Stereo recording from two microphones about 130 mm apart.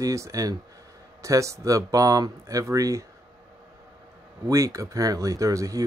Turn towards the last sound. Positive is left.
turn(degrees=-25)  # may be behind; listen again after turning